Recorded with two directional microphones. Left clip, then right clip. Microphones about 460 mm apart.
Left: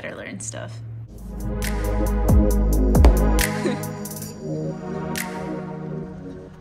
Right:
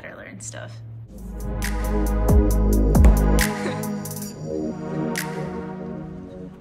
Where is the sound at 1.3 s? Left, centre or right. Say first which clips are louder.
Left 1 dB; centre.